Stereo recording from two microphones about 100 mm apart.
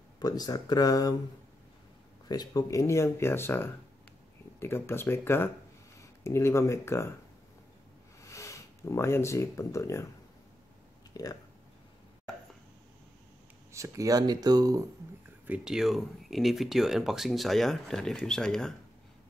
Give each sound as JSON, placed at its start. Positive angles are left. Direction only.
{"t": 0.2, "sound": "speech", "side_deg": 40}
{"t": 2.2, "sound": "speech", "side_deg": 40}
{"t": 8.2, "sound": "speech", "side_deg": 30}
{"t": 11.1, "sound": "speech", "side_deg": 40}
{"t": 13.7, "sound": "speech", "side_deg": -30}
{"t": 15.4, "sound": "speech", "side_deg": -10}